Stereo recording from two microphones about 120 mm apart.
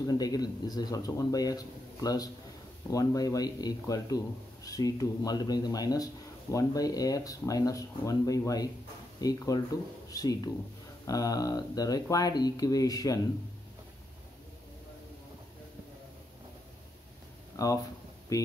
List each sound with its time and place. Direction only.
0.0 s speech: 30° left (ahead or behind)
17.6 s speech: 30° left (ahead or behind)